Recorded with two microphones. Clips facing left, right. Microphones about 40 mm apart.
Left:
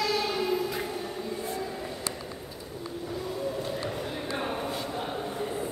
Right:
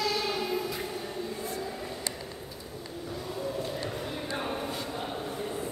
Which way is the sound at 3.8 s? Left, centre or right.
Centre.